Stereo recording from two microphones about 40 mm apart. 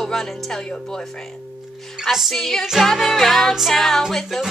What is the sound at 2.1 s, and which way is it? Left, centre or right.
Music, centre.